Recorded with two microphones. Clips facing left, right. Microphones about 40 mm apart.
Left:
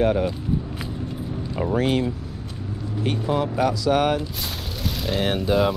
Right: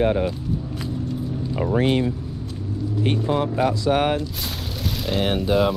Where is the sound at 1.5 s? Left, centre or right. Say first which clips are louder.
Right 1 dB; centre.